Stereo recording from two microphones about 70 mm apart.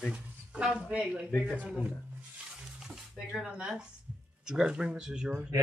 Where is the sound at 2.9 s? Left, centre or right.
Centre.